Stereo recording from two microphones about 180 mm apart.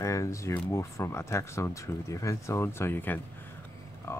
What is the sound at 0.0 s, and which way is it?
Speech, 15° left (ahead or behind).